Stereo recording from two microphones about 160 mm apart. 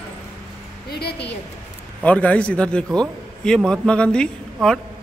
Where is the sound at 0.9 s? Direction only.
85° left.